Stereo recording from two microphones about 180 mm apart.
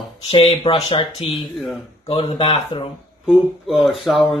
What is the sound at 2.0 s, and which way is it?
Speech, 30° left (ahead or behind).